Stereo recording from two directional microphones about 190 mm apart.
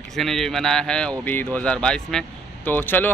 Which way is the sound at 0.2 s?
Centre (ahead or behind).